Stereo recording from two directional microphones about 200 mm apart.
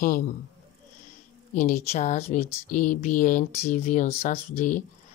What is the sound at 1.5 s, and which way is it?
Speech, 40° left (ahead or behind).